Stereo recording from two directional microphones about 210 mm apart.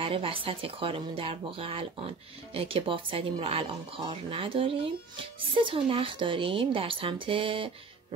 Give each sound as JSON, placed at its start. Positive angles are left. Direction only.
{"t": 0.0, "sound": "speech", "side_deg": -25}